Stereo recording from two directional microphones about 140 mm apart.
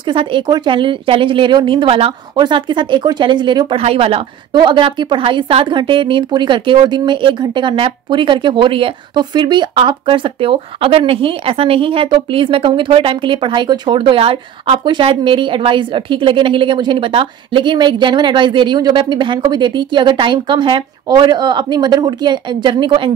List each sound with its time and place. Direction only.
0.0 s speech: 40° right (ahead or behind)
3.8 s speech: 45° right (ahead or behind)